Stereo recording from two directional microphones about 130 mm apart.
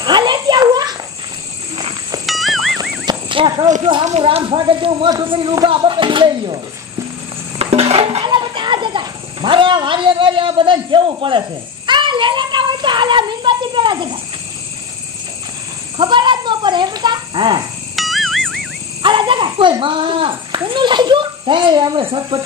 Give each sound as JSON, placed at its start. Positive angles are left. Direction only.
{"t": 0.0, "sound": "a sound", "side_deg": -35}
{"t": 2.2, "sound": "music", "side_deg": 0}
{"t": 2.8, "sound": "horse", "side_deg": -35}
{"t": 4.2, "sound": "speech", "side_deg": -45}
{"t": 7.5, "sound": "a sound", "side_deg": -50}
{"t": 16.0, "sound": "a child's voice", "side_deg": -35}
{"t": 17.9, "sound": "music", "side_deg": 0}
{"t": 19.0, "sound": "a child's voice", "side_deg": -40}